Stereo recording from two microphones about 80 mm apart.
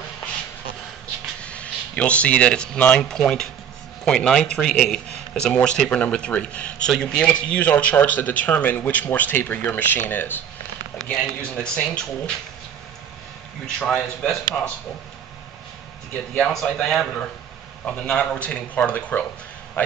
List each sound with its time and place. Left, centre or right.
1.4 s speech: centre
11.0 s speech: centre
13.7 s speech: centre
16.3 s speech: centre
16.9 s a man's voice: centre